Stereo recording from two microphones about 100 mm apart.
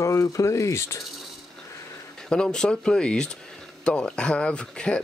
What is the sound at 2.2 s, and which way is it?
Speech, 5° left (ahead or behind).